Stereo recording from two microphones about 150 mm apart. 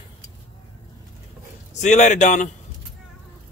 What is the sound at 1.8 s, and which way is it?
Speech, 55° left (ahead or behind).